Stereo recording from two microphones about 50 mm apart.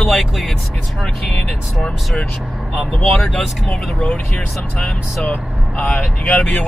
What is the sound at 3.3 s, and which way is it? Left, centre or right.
Speech, centre.